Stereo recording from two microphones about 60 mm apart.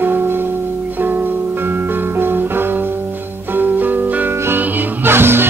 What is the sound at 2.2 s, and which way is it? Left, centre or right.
Music, right.